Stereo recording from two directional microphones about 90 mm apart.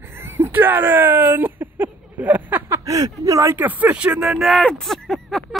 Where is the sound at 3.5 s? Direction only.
20° right (ahead or behind); by 5.6 s 5° left (ahead or behind).